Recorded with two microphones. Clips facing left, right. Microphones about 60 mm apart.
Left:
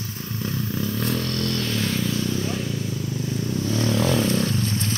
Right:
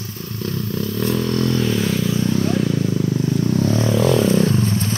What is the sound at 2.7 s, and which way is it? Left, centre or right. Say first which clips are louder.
Vehicle: right 9 dB; right.